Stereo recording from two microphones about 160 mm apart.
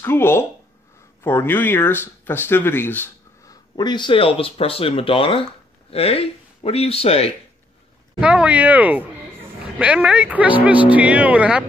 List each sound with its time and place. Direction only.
0.0 s speech: 15° left (ahead or behind)
3.7 s speech: 25° left (ahead or behind)
8.2 s speech: 5° right (ahead or behind)